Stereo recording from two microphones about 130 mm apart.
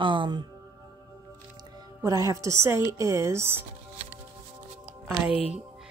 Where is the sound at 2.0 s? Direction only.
25° right (ahead or behind).